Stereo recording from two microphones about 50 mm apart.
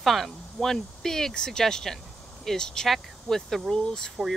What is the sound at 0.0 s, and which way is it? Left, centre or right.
Speech, centre.